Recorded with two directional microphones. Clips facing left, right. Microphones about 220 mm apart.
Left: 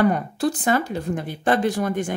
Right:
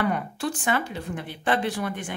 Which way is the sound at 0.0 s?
40° left (ahead or behind).